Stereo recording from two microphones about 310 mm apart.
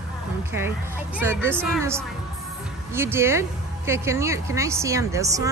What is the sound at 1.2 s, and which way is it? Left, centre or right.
A woman's voice, centre.